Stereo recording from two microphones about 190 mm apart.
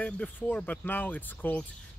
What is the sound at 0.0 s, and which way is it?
Speech, 10° left (ahead or behind).